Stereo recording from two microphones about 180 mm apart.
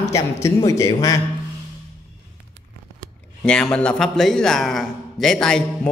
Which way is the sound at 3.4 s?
5° left (ahead or behind).